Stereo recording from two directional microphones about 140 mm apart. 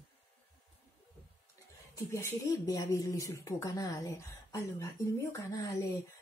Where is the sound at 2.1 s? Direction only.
20° left (ahead or behind).